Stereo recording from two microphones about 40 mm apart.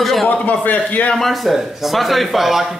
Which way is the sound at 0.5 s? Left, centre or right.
Left.